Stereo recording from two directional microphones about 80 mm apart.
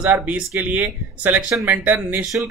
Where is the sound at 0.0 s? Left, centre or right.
Right.